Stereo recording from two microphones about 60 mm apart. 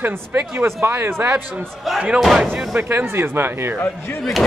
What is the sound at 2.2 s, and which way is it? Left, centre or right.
Speech, centre.